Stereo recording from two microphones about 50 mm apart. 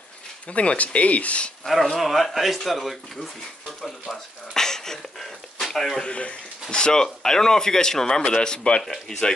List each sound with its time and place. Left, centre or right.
0.5 s speech: left
1.7 s speech: centre
4.6 s a sound: centre
6.0 s speech: left
8.8 s speech: centre